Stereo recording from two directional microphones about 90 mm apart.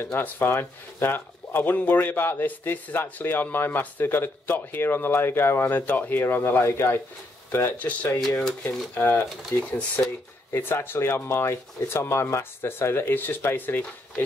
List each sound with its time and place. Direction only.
0.0 s a man's voice: 25° left (ahead or behind)
7.8 s speech: 15° left (ahead or behind)
8.6 s a man's voice: 25° left (ahead or behind)